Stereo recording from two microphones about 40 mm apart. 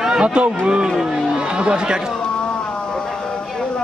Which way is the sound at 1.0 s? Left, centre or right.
Centre.